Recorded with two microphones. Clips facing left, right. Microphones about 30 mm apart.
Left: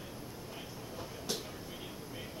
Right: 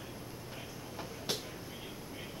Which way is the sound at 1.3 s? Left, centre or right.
Right.